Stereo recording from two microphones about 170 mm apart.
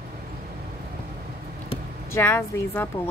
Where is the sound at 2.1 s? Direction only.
15° left (ahead or behind).